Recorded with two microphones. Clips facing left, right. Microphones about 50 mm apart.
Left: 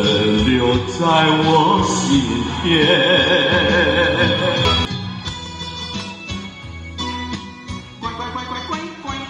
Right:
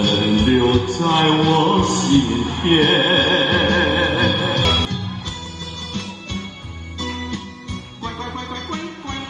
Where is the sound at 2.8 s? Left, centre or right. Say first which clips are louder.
Left 4 dB; left.